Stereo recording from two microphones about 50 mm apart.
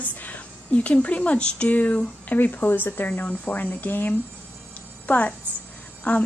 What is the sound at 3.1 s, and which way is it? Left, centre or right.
A woman's voice, left.